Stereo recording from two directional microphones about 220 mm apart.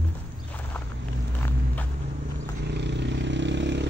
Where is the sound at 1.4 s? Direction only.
10° left (ahead or behind).